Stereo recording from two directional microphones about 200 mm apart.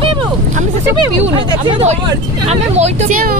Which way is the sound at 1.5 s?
25° right (ahead or behind).